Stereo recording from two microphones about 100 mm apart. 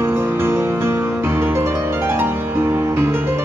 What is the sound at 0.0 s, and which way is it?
Music, 25° right (ahead or behind).